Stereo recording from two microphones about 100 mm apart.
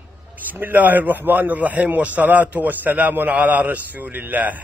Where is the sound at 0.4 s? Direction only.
20° right (ahead or behind).